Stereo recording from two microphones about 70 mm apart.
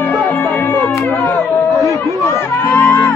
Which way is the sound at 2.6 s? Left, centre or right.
Left.